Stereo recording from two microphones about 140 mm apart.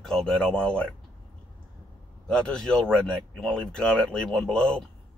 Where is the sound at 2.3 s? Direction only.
5° left (ahead or behind).